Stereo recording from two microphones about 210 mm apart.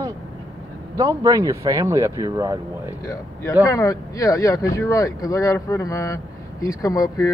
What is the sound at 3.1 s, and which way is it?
Speech, 15° left (ahead or behind).